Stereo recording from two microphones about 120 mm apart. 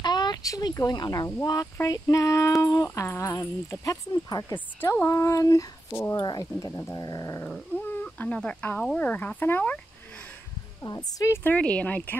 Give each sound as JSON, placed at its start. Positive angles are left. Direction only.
{"t": 0.0, "sound": "speech", "side_deg": 35}
{"t": 4.7, "sound": "speech", "side_deg": 20}
{"t": 6.1, "sound": "speech", "side_deg": 35}
{"t": 7.4, "sound": "speech", "side_deg": 15}
{"t": 11.1, "sound": "speech", "side_deg": 30}